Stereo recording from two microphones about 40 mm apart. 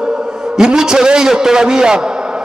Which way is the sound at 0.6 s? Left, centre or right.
Centre.